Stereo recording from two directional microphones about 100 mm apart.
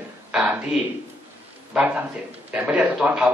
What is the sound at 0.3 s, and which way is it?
A man's voice, 10° right (ahead or behind).